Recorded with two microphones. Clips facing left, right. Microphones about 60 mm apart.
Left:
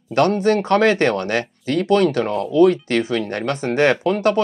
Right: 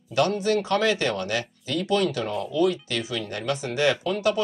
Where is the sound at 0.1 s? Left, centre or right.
Left.